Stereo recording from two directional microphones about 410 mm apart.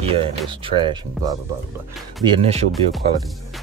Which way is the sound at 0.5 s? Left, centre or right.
Centre.